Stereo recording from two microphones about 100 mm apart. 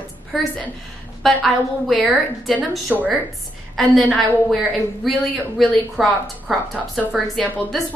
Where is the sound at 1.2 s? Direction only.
Centre (ahead or behind).